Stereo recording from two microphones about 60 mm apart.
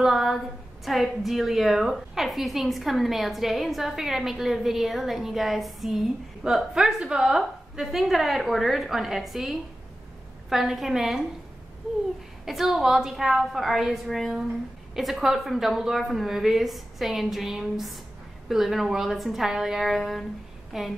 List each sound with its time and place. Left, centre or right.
0.0 s a woman's voice: centre
12.4 s a woman's voice: centre